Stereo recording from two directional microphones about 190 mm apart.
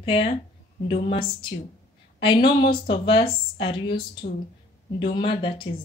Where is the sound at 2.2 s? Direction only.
25° left (ahead or behind).